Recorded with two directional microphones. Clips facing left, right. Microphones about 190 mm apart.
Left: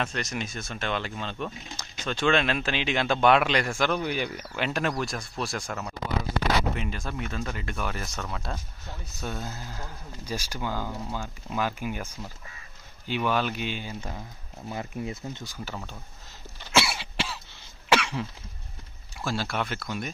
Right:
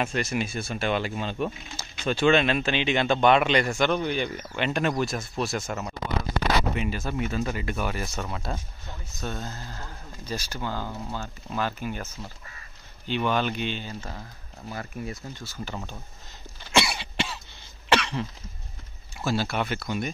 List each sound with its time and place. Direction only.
0.0 s speech: 10° right (ahead or behind)
9.2 s speech: 5° left (ahead or behind)
15.6 s speech: centre (ahead or behind)
16.7 s cough: centre (ahead or behind)
19.1 s speech: centre (ahead or behind)